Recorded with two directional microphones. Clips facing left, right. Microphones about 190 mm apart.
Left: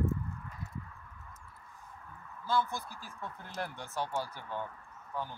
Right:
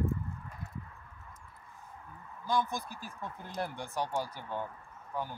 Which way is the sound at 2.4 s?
15° right (ahead or behind).